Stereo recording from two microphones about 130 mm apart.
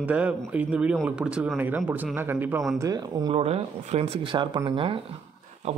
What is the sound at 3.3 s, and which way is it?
Speech, 50° right (ahead or behind).